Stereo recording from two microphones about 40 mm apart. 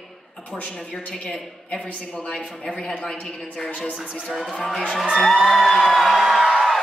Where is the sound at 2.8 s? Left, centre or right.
Left.